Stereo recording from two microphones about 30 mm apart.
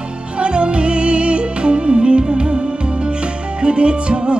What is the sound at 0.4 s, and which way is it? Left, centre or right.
Music, right.